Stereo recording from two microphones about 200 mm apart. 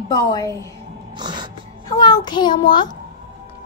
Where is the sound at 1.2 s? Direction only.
20° right (ahead or behind).